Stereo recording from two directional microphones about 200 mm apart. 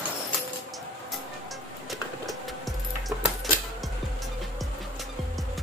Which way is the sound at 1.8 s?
Centre (ahead or behind).